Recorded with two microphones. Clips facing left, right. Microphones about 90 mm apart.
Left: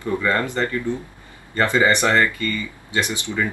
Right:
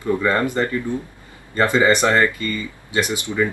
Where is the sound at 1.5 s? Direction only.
20° right (ahead or behind).